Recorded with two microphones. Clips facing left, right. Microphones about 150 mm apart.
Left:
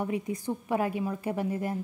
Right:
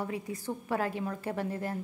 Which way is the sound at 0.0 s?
20° left (ahead or behind).